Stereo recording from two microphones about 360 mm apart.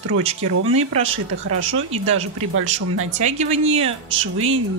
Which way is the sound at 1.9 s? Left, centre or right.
Centre.